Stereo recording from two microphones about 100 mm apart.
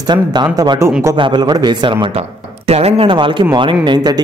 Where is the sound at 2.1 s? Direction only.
90° right.